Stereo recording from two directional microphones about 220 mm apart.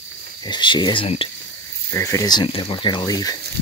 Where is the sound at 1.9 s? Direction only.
15° left (ahead or behind).